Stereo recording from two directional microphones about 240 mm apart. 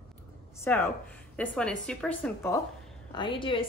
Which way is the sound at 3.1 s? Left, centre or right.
Left.